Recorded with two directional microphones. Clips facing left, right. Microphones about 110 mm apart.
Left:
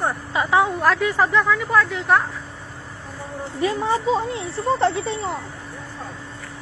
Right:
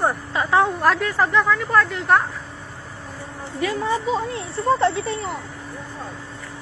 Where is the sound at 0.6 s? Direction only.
Centre (ahead or behind).